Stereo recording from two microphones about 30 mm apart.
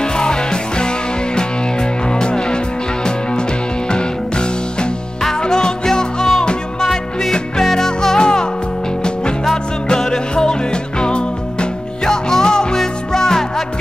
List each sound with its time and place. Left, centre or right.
0.0 s music: left
9.8 s music: left
12.1 s music: centre
12.7 s music: centre